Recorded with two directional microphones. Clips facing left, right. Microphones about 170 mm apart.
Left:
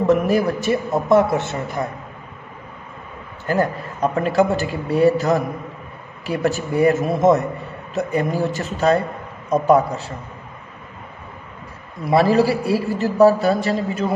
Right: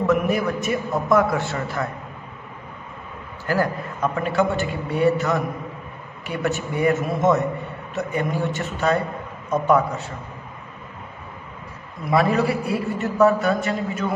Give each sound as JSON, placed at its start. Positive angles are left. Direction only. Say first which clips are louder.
{"t": 0.0, "sound": "a man's voice", "louder": "left 4 dB", "side_deg": 35}
{"t": 3.4, "sound": "a man's voice", "louder": "left 2 dB", "side_deg": 25}
{"t": 4.1, "sound": "a man's voice", "louder": "left 4 dB", "side_deg": 35}
{"t": 12.0, "sound": "a man's voice", "louder": "left 4 dB", "side_deg": 35}